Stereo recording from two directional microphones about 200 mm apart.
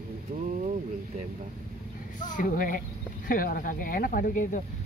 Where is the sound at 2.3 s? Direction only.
40° left (ahead or behind).